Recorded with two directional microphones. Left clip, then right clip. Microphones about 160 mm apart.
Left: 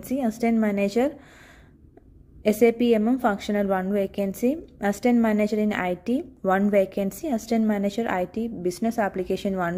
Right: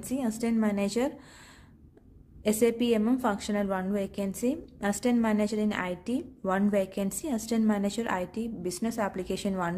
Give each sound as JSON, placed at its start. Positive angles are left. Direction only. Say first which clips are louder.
{"t": 0.0, "sound": "a woman's voice", "louder": "left 6 dB", "side_deg": 25}
{"t": 2.4, "sound": "a woman's voice", "louder": "left 6 dB", "side_deg": 25}